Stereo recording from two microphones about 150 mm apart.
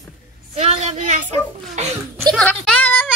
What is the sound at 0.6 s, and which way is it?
A woman's voice, 45° right (ahead or behind).